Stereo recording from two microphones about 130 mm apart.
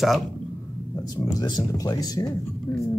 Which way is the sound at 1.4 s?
30° left (ahead or behind).